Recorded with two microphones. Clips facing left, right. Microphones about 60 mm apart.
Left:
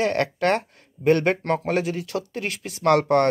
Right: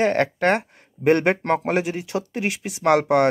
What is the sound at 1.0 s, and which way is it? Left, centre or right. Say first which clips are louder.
Speech: right 1 dB; right.